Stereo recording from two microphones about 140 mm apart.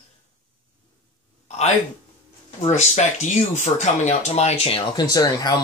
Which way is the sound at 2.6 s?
55° left (ahead or behind).